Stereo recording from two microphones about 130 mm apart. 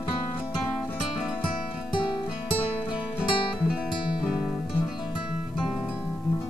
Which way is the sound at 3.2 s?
5° right (ahead or behind).